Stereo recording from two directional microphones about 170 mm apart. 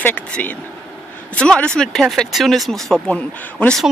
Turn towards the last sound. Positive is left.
turn(degrees=5)  # may be behind; listen again after turning